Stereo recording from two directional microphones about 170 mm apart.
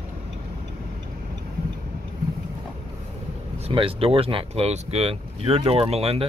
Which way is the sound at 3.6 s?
35° right (ahead or behind).